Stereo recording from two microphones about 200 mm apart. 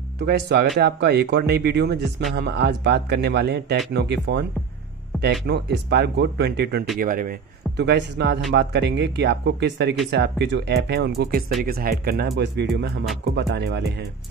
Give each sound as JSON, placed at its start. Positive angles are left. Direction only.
{"t": 0.2, "sound": "speech", "side_deg": -55}
{"t": 7.0, "sound": "a man's voice", "side_deg": -45}